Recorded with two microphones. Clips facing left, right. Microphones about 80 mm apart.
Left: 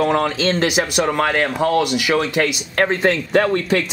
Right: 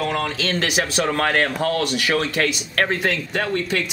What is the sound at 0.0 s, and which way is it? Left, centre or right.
A man's voice, left.